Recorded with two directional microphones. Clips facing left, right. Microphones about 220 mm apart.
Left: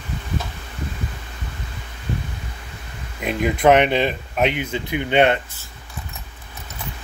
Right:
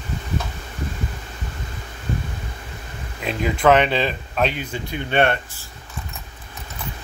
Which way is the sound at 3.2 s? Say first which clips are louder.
Left 1 dB; 15° left (ahead or behind).